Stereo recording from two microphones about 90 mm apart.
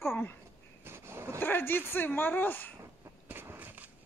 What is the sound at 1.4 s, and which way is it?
A man's voice, 20° left (ahead or behind).